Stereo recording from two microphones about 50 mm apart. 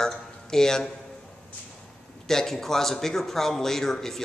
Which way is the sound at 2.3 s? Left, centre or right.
Centre.